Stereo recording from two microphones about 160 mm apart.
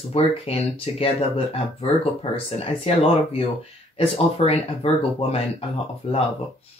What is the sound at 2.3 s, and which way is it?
Speech, 40° left (ahead or behind).